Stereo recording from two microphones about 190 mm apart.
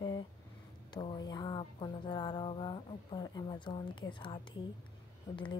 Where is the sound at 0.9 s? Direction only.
25° left (ahead or behind).